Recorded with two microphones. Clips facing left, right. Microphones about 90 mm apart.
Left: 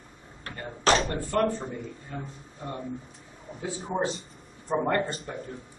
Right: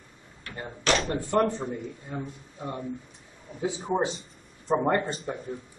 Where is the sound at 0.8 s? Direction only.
35° left (ahead or behind).